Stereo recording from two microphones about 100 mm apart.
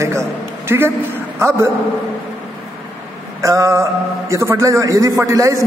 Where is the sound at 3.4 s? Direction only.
35° right (ahead or behind).